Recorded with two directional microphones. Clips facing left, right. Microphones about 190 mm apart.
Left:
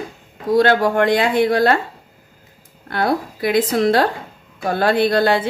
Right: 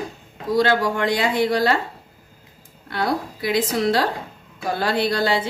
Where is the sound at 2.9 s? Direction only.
55° left (ahead or behind).